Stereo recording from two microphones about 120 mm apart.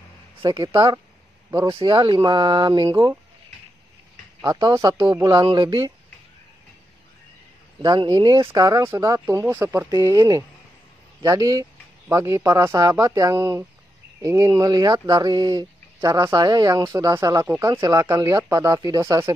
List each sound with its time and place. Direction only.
0.6 s speech: 50° right (ahead or behind); by 3.2 s 30° right (ahead or behind)
4.5 s speech: 35° right (ahead or behind)
7.8 s speech: 35° right (ahead or behind)
9.3 s speech: 20° right (ahead or behind)
9.8 s speech: 30° right (ahead or behind)